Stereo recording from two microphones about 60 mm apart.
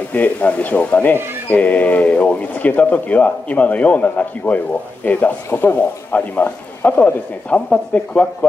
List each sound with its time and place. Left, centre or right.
0.1 s speech: left